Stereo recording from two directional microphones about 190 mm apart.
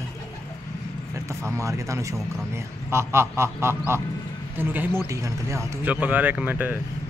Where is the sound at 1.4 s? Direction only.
15° right (ahead or behind).